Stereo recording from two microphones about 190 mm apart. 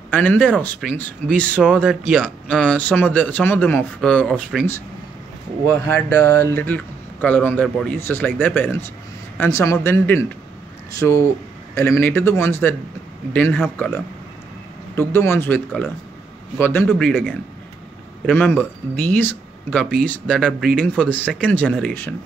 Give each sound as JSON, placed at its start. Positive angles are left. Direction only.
{"t": 0.1, "sound": "speech", "side_deg": 10}
{"t": 2.2, "sound": "speech", "side_deg": 5}
{"t": 5.7, "sound": "speech", "side_deg": 15}
{"t": 17.1, "sound": "speech", "side_deg": -5}
{"t": 18.2, "sound": "speech", "side_deg": 10}